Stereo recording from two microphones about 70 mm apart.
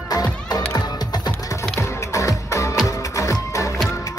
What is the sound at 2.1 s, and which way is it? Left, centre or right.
Music, left.